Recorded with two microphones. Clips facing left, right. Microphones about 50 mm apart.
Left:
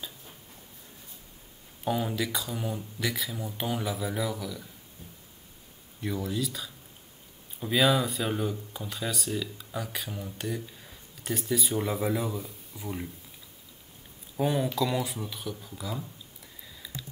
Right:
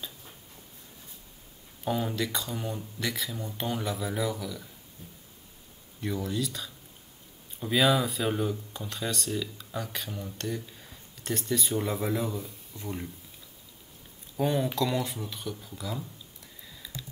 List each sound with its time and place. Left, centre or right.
1.9 s speech: centre
5.9 s speech: centre
14.4 s speech: centre
16.6 s a sound: centre